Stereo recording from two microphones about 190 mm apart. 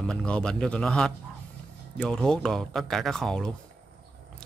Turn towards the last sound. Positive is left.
turn(degrees=5)  # may be behind; listen again after turning